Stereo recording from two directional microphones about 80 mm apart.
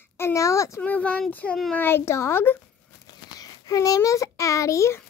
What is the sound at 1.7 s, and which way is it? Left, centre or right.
Speech, left.